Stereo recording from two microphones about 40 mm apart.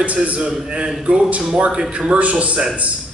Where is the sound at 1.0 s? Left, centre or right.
Right.